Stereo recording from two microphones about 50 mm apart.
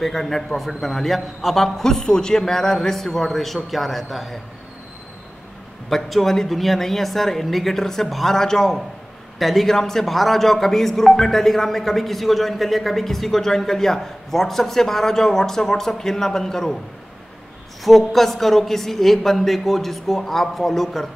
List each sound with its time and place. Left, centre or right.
0.0 s a man's voice: centre
5.9 s a man's voice: centre
17.8 s a man's voice: centre